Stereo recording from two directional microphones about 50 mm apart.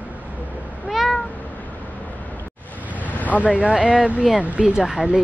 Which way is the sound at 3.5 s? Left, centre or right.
Right.